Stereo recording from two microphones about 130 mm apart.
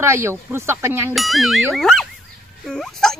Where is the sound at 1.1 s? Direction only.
Centre (ahead or behind).